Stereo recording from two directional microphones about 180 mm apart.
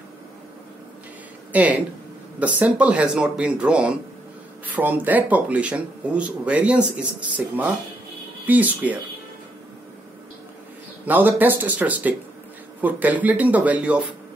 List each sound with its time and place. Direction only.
1.5 s speech: 10° right (ahead or behind)
11.1 s speech: 10° right (ahead or behind)